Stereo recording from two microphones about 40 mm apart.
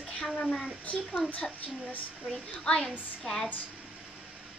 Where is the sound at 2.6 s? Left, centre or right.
Left.